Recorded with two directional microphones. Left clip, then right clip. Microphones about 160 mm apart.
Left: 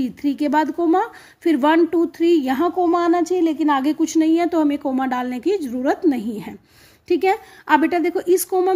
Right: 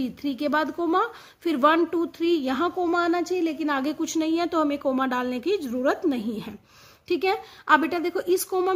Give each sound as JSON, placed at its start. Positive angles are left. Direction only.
{"t": 0.0, "sound": "speech", "side_deg": 15}